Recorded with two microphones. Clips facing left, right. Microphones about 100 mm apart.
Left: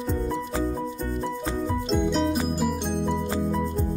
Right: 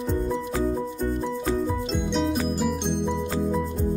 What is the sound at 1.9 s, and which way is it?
Music, centre (ahead or behind).